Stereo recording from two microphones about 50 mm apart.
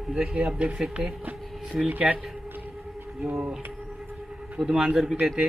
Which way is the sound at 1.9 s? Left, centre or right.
Right.